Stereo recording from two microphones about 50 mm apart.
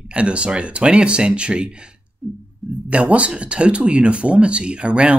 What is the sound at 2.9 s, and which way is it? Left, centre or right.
Speech, right.